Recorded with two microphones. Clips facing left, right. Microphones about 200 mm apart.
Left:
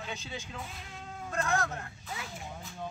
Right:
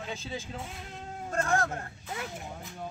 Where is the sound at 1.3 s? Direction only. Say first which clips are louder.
Right 3 dB; 35° right (ahead or behind).